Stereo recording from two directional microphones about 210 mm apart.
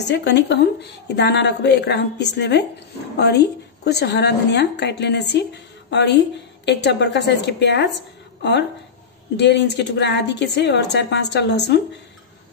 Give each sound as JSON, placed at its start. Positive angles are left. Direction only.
{"t": 0.1, "sound": "a woman's voice", "side_deg": 55}